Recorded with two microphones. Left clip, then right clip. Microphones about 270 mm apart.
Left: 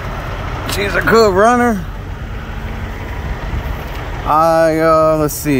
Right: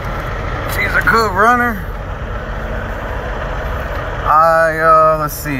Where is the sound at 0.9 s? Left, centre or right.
Left.